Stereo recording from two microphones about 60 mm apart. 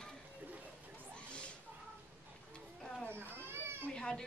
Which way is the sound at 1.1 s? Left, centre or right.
Centre.